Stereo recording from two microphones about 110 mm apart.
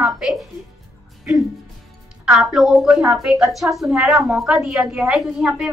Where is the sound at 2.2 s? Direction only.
Centre (ahead or behind).